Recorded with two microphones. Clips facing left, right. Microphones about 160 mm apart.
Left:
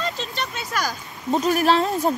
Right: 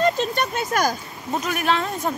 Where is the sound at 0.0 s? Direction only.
45° right (ahead or behind).